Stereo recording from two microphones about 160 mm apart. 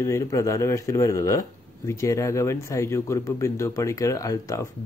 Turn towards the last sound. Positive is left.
turn(degrees=20)  # may be behind; listen again after turning